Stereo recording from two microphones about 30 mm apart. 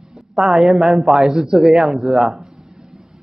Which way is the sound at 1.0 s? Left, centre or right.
Centre.